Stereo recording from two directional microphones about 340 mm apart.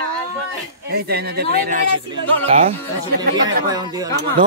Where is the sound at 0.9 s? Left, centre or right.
Right.